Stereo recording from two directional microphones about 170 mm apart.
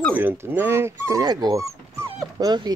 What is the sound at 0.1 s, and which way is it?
Speech, 10° right (ahead or behind).